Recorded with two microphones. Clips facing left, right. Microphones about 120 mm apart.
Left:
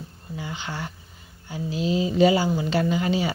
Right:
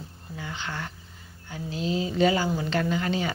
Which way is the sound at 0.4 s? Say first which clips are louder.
Left 2 dB; 15° left (ahead or behind).